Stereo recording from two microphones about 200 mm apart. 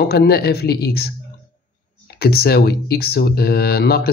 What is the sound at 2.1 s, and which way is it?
Speech, 50° left (ahead or behind).